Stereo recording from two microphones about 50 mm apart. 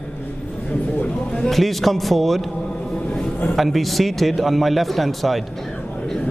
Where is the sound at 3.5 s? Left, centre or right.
Centre.